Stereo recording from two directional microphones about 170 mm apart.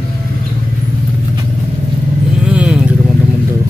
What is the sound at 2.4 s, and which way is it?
Vehicle, 5° right (ahead or behind).